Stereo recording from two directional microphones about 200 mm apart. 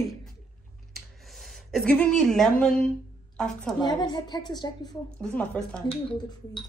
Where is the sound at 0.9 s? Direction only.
Centre (ahead or behind).